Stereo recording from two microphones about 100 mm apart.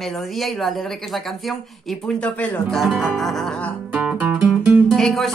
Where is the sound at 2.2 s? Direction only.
10° left (ahead or behind).